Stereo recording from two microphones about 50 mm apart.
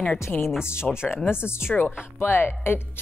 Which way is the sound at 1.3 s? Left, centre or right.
Left.